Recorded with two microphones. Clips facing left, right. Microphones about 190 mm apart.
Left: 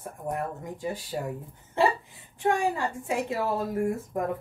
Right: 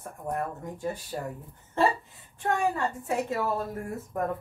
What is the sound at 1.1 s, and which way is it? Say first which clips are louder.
Speech: left 2 dB; 15° left (ahead or behind).